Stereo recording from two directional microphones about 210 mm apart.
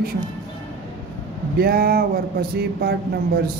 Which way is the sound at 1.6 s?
45° right (ahead or behind).